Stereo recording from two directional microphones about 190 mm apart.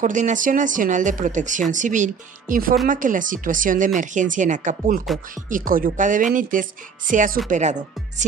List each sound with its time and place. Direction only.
0.0 s speech: 40° right (ahead or behind)